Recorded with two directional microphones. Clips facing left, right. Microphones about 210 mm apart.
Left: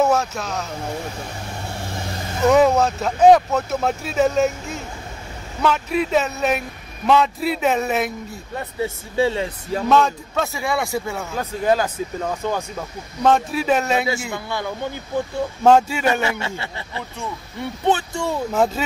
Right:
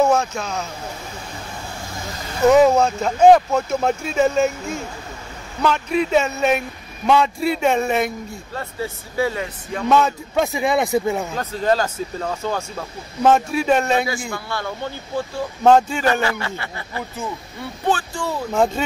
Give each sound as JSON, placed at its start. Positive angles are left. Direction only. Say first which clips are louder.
{"t": 0.0, "sound": "speech", "louder": "right 1 dB", "side_deg": 5}
{"t": 2.5, "sound": "speech", "louder": "right 1 dB", "side_deg": 0}
{"t": 8.5, "sound": "speech", "louder": "left 3 dB", "side_deg": 25}
{"t": 9.8, "sound": "speech", "louder": "even", "side_deg": 0}
{"t": 10.3, "sound": "a man's voice", "louder": "right 4 dB", "side_deg": -15}
{"t": 11.3, "sound": "speech", "louder": "left 5 dB", "side_deg": 10}
{"t": 13.2, "sound": "speech", "louder": "right 2 dB", "side_deg": 0}
{"t": 14.3, "sound": "speech", "louder": "left 1 dB", "side_deg": 15}
{"t": 16.2, "sound": "speech", "louder": "right 1 dB", "side_deg": 25}
{"t": 18.5, "sound": "speech", "louder": "right 2 dB", "side_deg": 5}